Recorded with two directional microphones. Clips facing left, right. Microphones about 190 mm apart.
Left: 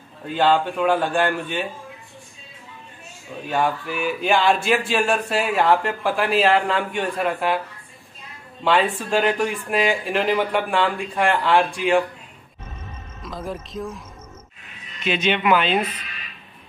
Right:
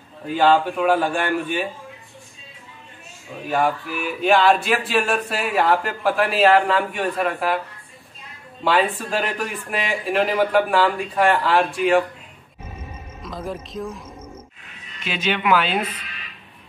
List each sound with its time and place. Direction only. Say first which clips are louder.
0.4 s a man's voice: right 1 dB; 5° right (ahead or behind)
3.4 s speech: right 1 dB; 5° right (ahead or behind)
8.6 s speech: even; centre (ahead or behind)
13.2 s speech: right 1 dB; centre (ahead or behind)
15.0 s speech: left 2 dB; 5° right (ahead or behind)